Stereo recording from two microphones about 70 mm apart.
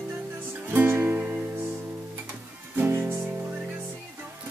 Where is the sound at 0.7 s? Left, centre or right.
Right.